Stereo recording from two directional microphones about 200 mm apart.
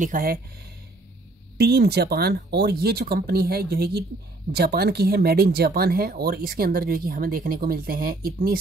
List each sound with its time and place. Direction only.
0.0 s speech: 45° right (ahead or behind)